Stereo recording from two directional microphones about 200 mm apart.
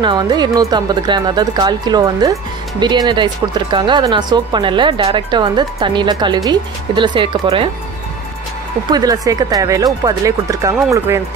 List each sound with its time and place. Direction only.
0.0 s speech: 20° right (ahead or behind)
8.9 s speech: 20° right (ahead or behind)